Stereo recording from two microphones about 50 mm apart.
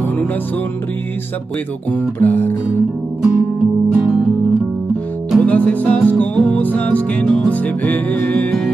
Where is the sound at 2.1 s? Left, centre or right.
Left.